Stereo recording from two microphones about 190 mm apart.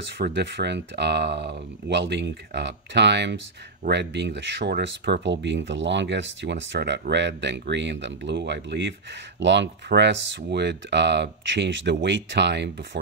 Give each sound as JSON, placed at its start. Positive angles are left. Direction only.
{"t": 0.0, "sound": "speech", "side_deg": -65}